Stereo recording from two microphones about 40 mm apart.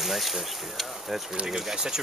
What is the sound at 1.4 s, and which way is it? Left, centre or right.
Speech, centre.